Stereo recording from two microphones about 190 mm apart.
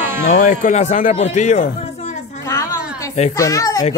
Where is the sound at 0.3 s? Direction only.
40° left (ahead or behind).